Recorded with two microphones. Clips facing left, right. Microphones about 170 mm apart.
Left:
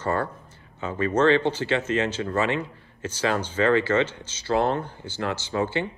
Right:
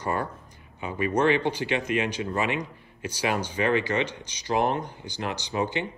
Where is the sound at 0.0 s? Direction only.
15° right (ahead or behind).